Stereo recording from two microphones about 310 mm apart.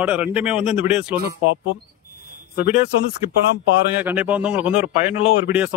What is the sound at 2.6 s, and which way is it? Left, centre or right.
Speech, left.